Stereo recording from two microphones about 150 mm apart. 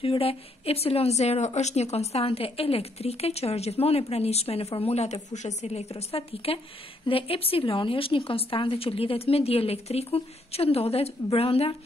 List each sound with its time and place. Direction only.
0.0 s speech: 40° left (ahead or behind)